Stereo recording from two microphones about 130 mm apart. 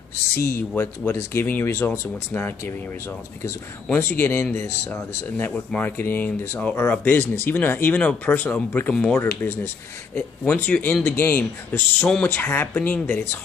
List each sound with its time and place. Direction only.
0.7 s speech: 20° left (ahead or behind)
3.9 s speech: 15° left (ahead or behind)
9.2 s speech: 20° left (ahead or behind)